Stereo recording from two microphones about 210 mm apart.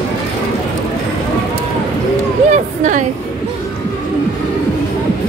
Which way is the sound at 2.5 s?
35° right (ahead or behind).